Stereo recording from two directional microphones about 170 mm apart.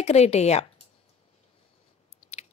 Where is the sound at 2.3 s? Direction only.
40° left (ahead or behind).